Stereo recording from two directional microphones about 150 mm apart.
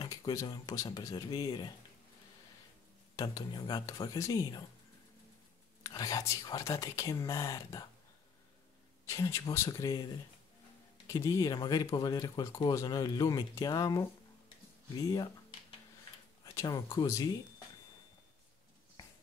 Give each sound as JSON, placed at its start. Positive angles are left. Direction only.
{"t": 0.0, "sound": "speech", "side_deg": 25}
{"t": 3.2, "sound": "speech", "side_deg": 25}
{"t": 5.9, "sound": "speech", "side_deg": 25}
{"t": 9.0, "sound": "speech", "side_deg": 20}
{"t": 11.1, "sound": "speech", "side_deg": 20}
{"t": 16.5, "sound": "speech", "side_deg": 20}